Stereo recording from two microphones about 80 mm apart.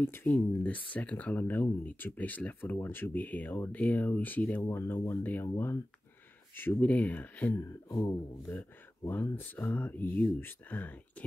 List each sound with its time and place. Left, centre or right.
0.0 s speech: left
0.3 s speech: centre
7.5 s speech: left
9.0 s speech: left